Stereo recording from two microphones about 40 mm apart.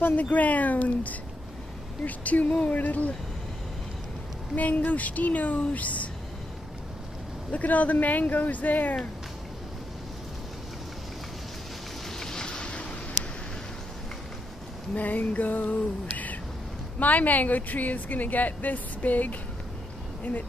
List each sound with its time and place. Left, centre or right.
0.0 s a woman's voice: left
4.6 s a woman's voice: left
7.5 s speech: left
12.2 s a sound: centre
15.0 s speech: left